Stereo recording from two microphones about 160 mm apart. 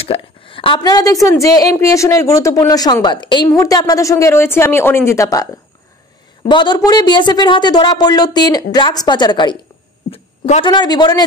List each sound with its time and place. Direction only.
0.0 s a woman's voice: 35° left (ahead or behind)
6.5 s speech: 30° left (ahead or behind)
10.1 s a sound: 45° left (ahead or behind)
10.6 s speech: 25° left (ahead or behind)